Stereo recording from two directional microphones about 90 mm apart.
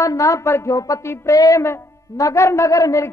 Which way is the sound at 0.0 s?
35° left (ahead or behind).